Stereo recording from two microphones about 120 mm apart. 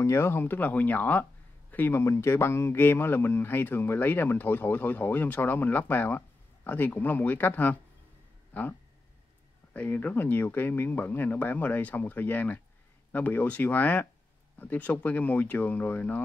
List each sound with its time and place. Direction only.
0.0 s speech: 20° left (ahead or behind)
9.8 s speech: 15° left (ahead or behind)